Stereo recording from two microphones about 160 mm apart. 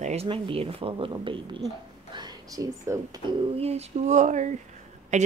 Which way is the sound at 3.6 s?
40° right (ahead or behind).